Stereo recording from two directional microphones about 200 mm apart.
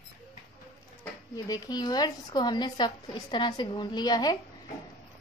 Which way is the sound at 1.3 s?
20° left (ahead or behind).